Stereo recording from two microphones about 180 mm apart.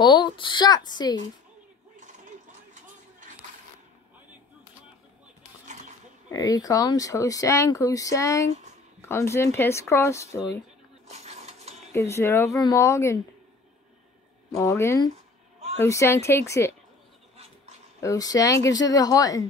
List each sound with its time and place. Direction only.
0.0 s speech: 25° left (ahead or behind)
2.7 s a sound: 45° right (ahead or behind)
6.3 s speech: 20° left (ahead or behind)
11.1 s coin: 40° right (ahead or behind)
11.9 s speech: 15° left (ahead or behind)
14.6 s speech: 15° left (ahead or behind)
18.0 s speech: 20° left (ahead or behind)